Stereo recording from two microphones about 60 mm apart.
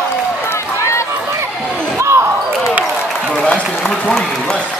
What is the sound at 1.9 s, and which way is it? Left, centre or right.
Basketball bounce, right.